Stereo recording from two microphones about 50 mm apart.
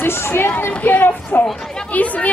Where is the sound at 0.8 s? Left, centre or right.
Left.